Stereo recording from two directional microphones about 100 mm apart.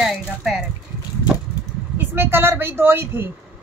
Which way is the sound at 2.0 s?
25° right (ahead or behind).